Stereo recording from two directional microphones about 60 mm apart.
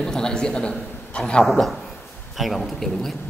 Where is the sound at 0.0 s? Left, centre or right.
Centre.